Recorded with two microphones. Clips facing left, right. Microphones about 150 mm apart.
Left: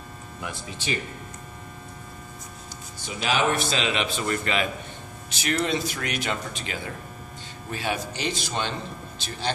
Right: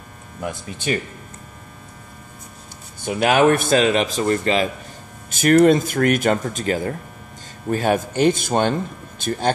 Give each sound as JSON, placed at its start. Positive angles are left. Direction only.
{"t": 0.4, "sound": "speech", "side_deg": -50}
{"t": 3.0, "sound": "speech", "side_deg": -55}
{"t": 5.3, "sound": "speech", "side_deg": -50}